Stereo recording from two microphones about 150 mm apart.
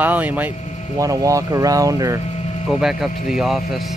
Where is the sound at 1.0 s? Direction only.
20° right (ahead or behind).